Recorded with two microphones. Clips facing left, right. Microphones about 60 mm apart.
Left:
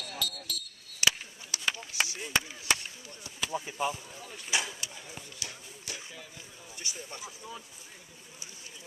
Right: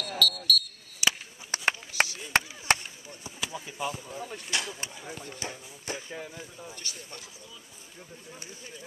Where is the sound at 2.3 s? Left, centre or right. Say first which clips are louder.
Right 5 dB; right.